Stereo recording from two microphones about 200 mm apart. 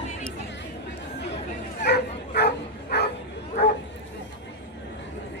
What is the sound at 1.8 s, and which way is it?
Bow-wow, 55° left (ahead or behind).